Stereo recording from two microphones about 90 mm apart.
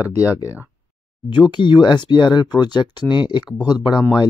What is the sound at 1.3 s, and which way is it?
Speech, 60° left (ahead or behind).